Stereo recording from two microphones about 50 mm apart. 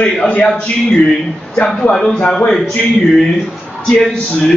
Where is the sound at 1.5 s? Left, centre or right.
Left.